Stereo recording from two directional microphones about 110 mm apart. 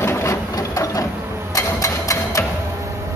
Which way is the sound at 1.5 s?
30° left (ahead or behind).